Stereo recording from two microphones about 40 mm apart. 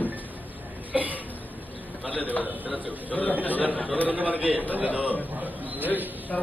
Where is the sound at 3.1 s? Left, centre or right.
Left.